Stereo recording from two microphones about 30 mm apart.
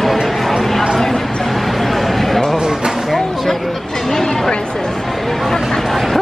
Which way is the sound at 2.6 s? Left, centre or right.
Right.